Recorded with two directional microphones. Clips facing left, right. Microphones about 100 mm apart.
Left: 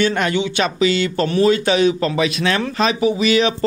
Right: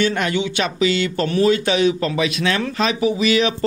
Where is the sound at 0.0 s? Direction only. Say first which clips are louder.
Left 2 dB; 40° left (ahead or behind).